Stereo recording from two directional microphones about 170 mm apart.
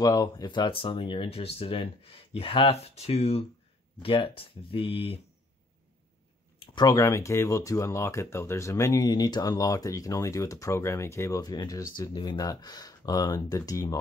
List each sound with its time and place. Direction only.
0.0 s speech: 20° left (ahead or behind)
6.6 s speech: 25° left (ahead or behind)